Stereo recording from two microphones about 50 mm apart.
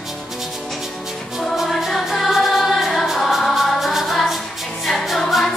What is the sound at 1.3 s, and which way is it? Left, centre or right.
Music, centre.